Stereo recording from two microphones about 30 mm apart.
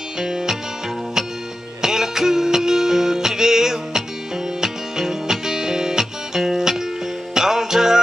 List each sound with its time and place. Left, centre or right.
0.2 s music: centre
1.8 s music: centre